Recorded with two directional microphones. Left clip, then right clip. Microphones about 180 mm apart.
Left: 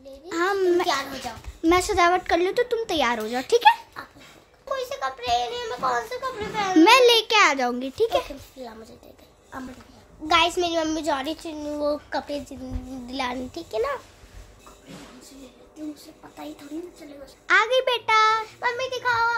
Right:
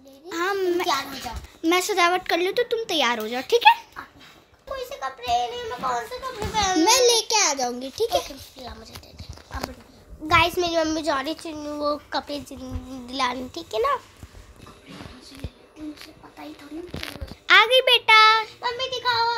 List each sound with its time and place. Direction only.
0.3 s a child's voice: 20° left (ahead or behind)
4.7 s a sound: 20° left (ahead or behind)
6.5 s a child's voice: 10° left (ahead or behind)
7.4 s a child's voice: 45° left (ahead or behind)
7.8 s a child's voice: 15° left (ahead or behind)
10.2 s a child's voice: 10° left (ahead or behind)
17.5 s a child's voice: centre (ahead or behind)
18.6 s a child's voice: 15° left (ahead or behind)